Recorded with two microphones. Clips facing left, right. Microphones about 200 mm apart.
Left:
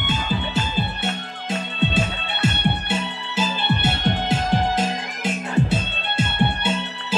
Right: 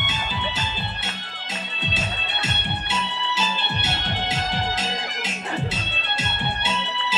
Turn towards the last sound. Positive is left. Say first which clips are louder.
# left 3 dB
turn(degrees=55)  # may be behind; listen again after turning